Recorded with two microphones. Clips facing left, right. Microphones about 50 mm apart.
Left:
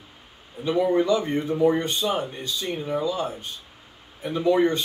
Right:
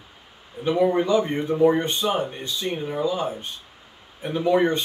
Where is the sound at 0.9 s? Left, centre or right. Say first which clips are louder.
Right 1 dB; right.